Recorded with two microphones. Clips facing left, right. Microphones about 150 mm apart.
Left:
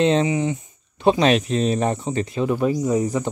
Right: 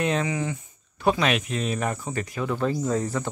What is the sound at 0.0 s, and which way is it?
Speech, 25° left (ahead or behind).